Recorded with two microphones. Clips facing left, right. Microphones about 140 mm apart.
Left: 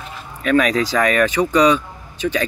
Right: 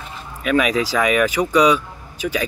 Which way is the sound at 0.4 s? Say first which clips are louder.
Left 2 dB; 10° right (ahead or behind).